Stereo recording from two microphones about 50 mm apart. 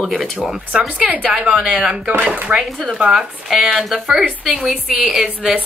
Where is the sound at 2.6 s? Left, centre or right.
Centre.